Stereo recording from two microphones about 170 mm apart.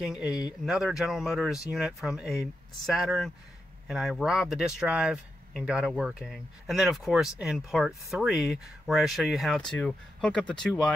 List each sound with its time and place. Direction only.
0.0 s speech: 5° right (ahead or behind)